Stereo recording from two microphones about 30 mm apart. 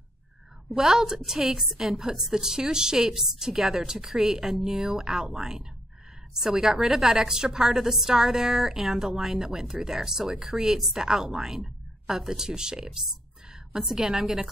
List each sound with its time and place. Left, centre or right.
0.7 s a woman's voice: centre
2.1 s a woman's voice: centre
3.1 s a woman's voice: centre
7.8 s a woman's voice: centre
8.1 s speech: centre
11.3 s a sound: centre
12.2 s speech: centre